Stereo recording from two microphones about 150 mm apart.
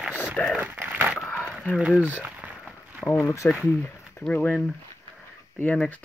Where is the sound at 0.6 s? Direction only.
15° right (ahead or behind).